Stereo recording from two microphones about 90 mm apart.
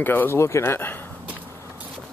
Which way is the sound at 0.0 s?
20° left (ahead or behind).